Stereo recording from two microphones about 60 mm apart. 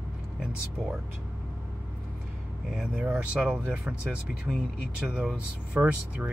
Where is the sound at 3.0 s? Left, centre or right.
Right.